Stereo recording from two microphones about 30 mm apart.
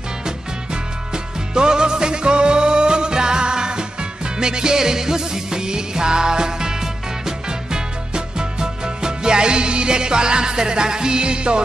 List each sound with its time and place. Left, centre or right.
1.1 s music: right